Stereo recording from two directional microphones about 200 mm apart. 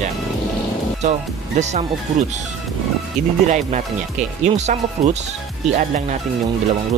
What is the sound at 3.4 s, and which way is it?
Speech, 35° right (ahead or behind).